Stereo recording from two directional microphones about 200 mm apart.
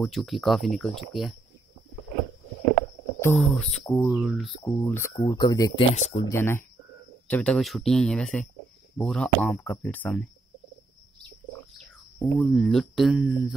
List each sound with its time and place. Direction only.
0.0 s speech: centre (ahead or behind)
3.2 s speech: 10° left (ahead or behind)
4.6 s speech: 10° left (ahead or behind)
5.9 s speech: 35° left (ahead or behind)
6.2 s speech: 10° left (ahead or behind)
12.2 s speech: 5° left (ahead or behind)